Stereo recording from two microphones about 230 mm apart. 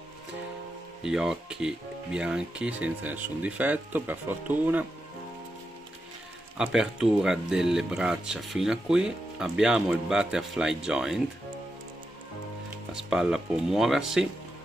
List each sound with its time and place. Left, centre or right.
1.0 s speech: centre
6.6 s speech: centre
12.9 s speech: centre